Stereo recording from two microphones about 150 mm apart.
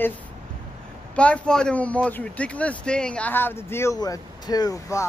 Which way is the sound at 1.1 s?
5° left (ahead or behind).